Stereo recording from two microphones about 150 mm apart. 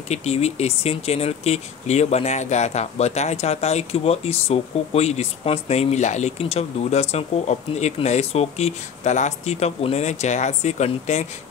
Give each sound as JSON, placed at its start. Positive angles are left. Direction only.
{"t": 0.1, "sound": "speech", "side_deg": 45}